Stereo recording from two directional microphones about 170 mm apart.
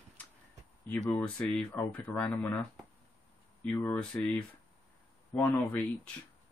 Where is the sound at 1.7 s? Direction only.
10° left (ahead or behind).